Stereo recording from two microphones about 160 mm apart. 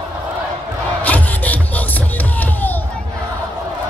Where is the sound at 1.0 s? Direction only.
10° left (ahead or behind).